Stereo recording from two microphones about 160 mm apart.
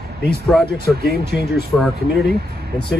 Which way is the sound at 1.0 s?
85° left.